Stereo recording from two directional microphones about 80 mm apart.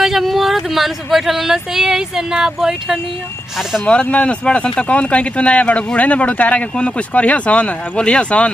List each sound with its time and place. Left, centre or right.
0.0 s speech: centre
3.8 s speech: centre